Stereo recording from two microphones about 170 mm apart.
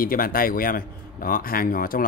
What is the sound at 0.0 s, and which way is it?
A man's voice, 60° left (ahead or behind).